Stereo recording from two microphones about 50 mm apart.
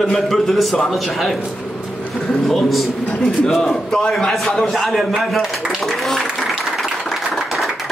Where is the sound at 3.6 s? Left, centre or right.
Centre.